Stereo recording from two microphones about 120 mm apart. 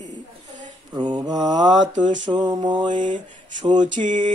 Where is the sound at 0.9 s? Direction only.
35° right (ahead or behind).